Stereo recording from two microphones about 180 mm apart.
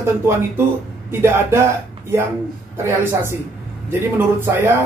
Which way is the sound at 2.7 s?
15° right (ahead or behind).